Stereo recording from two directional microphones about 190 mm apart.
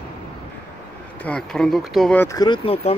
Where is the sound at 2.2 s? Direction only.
20° left (ahead or behind).